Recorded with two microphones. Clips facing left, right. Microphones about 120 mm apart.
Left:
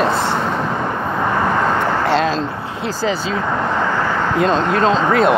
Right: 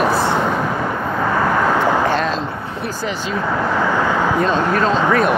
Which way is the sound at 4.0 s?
15° right (ahead or behind).